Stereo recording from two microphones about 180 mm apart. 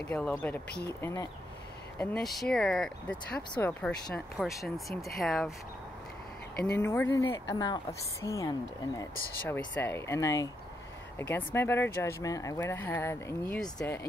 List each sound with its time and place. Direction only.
0.1 s speech: 5° left (ahead or behind)
1.0 s speech: 20° left (ahead or behind)
2.5 s speech: 5° left (ahead or behind)
6.6 s a woman's voice: 10° left (ahead or behind)